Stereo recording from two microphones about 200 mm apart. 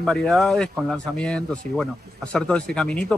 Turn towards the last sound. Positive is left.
turn(degrees=5)  # may be behind; listen again after turning